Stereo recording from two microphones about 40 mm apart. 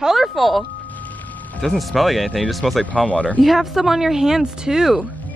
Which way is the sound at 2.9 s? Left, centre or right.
Left.